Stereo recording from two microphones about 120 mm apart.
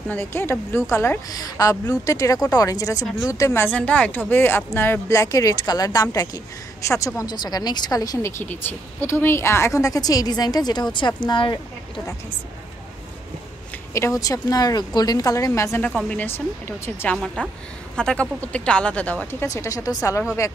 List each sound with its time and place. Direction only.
0.1 s speech: 20° left (ahead or behind)
3.7 s speech: 10° left (ahead or behind); by 11.6 s 40° left (ahead or behind)
13.9 s speech: 25° left (ahead or behind)
15.9 s speech: centre (ahead or behind)
16.2 s speech: 20° left (ahead or behind)
17.9 s speech: 5° left (ahead or behind)
19.4 s speech: 25° left (ahead or behind)